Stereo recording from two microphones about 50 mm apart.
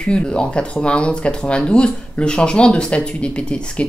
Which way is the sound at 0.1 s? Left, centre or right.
Centre.